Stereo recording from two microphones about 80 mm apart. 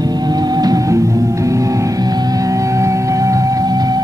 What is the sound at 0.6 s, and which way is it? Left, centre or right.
Music, right.